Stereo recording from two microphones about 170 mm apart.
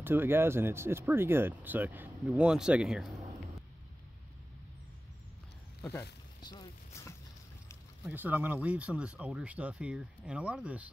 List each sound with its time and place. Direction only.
0.0 s speech: 10° right (ahead or behind)
6.4 s a sound: 25° left (ahead or behind)
8.1 s speech: 10° right (ahead or behind)